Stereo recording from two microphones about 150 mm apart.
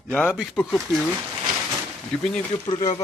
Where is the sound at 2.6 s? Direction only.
40° left (ahead or behind).